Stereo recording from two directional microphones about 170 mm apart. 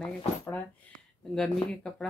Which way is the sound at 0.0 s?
5° left (ahead or behind).